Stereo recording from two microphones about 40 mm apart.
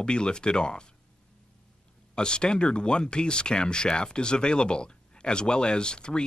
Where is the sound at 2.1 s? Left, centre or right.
Left.